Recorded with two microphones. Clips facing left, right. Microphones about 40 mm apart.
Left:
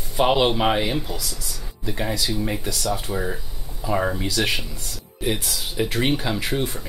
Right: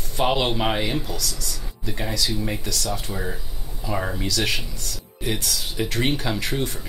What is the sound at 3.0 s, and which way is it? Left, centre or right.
Speech, centre.